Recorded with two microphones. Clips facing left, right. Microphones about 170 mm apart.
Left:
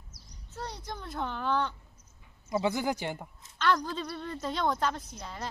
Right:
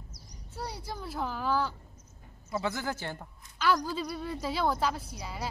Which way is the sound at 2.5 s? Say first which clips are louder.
Left 4 dB; 20° left (ahead or behind).